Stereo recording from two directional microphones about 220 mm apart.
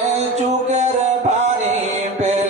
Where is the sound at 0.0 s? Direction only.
30° right (ahead or behind).